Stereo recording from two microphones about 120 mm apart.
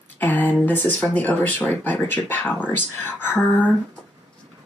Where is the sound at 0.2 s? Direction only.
15° left (ahead or behind).